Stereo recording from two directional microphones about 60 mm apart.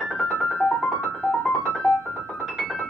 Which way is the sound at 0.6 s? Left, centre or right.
Centre.